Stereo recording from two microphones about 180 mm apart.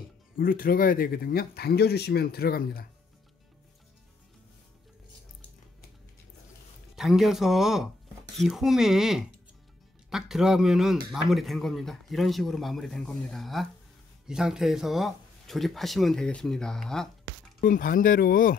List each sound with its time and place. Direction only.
0.4 s speech: 50° left (ahead or behind)
7.0 s speech: centre (ahead or behind)
17.6 s speech: 50° left (ahead or behind)